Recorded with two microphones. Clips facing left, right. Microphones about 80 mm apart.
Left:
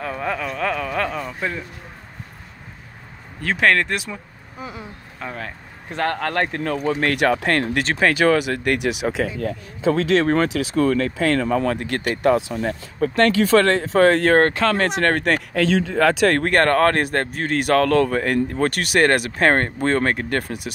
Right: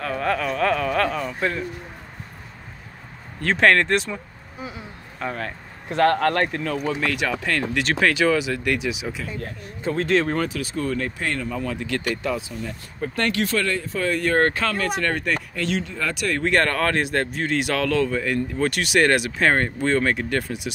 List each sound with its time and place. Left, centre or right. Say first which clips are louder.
0.0 s speech: right 2 dB; centre
3.4 s speech: right 1 dB; centre
5.2 s speech: right 2 dB; centre
6.3 s speech: left 1 dB; left
7.8 s speech: left 1 dB; left
11.8 s speech: left 2 dB; left
12.4 s speech: left 8 dB; left
16.4 s speech: left 1 dB; left